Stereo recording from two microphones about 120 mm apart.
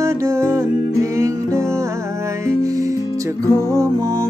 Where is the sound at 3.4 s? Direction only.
25° right (ahead or behind).